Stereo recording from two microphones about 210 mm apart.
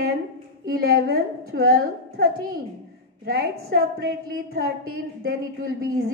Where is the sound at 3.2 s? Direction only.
50° right (ahead or behind).